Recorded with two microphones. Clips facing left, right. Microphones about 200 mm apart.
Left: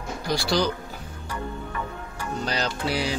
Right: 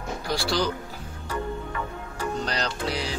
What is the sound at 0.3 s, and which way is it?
Speech, centre (ahead or behind).